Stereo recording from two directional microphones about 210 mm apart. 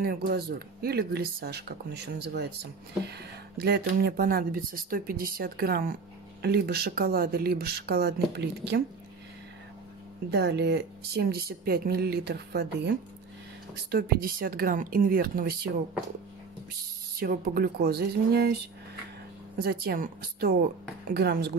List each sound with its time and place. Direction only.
0.0 s speech: 50° right (ahead or behind)
10.3 s speech: 55° right (ahead or behind)
17.2 s speech: 45° right (ahead or behind)
19.6 s speech: 45° right (ahead or behind)